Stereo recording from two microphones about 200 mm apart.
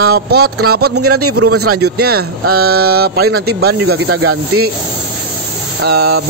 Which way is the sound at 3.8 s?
90° right.